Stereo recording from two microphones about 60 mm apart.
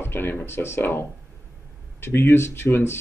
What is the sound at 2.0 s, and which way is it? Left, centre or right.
Speech, left.